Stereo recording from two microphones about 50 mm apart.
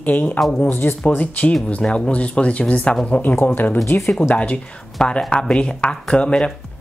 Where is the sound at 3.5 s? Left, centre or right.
Left.